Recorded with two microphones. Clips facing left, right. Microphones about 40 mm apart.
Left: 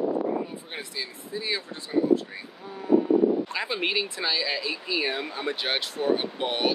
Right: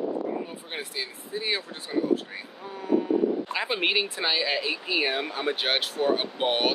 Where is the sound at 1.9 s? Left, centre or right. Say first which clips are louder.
Left 3 dB; centre.